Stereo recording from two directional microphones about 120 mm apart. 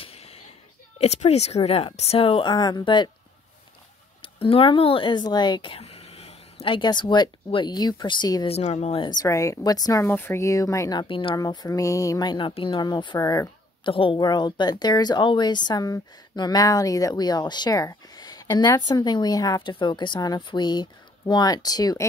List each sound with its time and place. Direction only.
0.0 s a sound: 55° left (ahead or behind)
0.9 s speech: 65° left (ahead or behind); by 2.5 s 50° left (ahead or behind)
2.5 s speech: 35° left (ahead or behind)
4.2 s speech: 50° left (ahead or behind)
8.5 s speech: 65° left (ahead or behind)
9.2 s speech: 25° left (ahead or behind)
10.0 s speech: 20° left (ahead or behind); by 11.3 s 45° left (ahead or behind)
11.3 s speech: 30° left (ahead or behind)
13.8 s speech: 45° left (ahead or behind)